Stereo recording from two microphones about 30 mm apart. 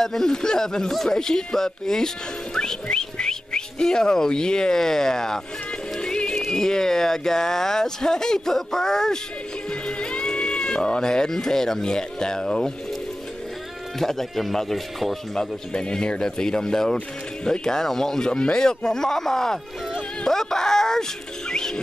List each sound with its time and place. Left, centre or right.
0.0 s speech: centre
2.5 s music: centre
2.9 s speech: left
5.9 s music: left
6.5 s speech: left
9.7 s speech: left
13.9 s speech: centre
15.3 s speech: left
18.3 s speech: left; by 19.6 s centre
20.2 s music: centre